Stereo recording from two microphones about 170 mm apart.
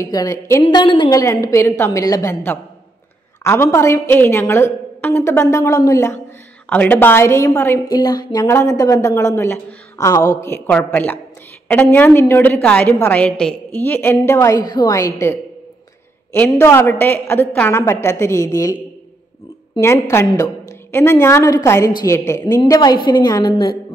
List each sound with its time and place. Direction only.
0.0 s a woman's voice: 20° left (ahead or behind)
1.2 s a woman's voice: 20° left (ahead or behind)
3.4 s a woman's voice: 15° left (ahead or behind)
16.3 s a woman's voice: 15° left (ahead or behind)
19.8 s a woman's voice: 15° left (ahead or behind)